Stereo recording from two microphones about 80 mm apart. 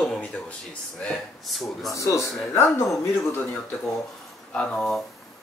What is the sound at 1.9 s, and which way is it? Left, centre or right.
Speech, left.